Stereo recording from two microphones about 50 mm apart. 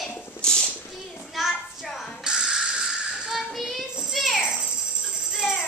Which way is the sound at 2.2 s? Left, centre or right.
Centre.